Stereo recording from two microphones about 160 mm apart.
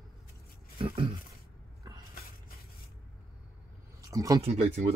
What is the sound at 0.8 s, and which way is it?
Speech, 35° right (ahead or behind).